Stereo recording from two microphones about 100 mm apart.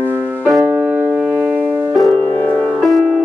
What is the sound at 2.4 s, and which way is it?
Music, 15° left (ahead or behind).